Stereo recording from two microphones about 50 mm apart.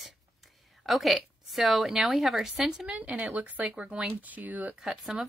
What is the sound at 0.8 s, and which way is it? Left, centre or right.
A woman's voice, centre.